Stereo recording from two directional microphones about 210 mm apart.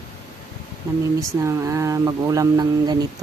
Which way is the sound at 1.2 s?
15° right (ahead or behind).